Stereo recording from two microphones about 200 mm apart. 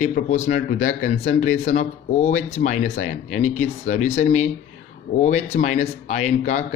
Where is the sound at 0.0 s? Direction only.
40° left (ahead or behind).